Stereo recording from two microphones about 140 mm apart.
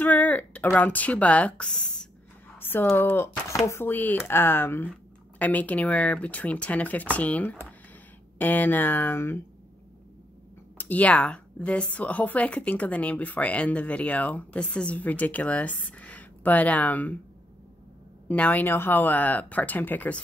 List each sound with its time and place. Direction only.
0.0 s a woman's voice: 10° left (ahead or behind)
10.8 s a woman's voice: 10° left (ahead or behind)
18.3 s a woman's voice: 10° left (ahead or behind)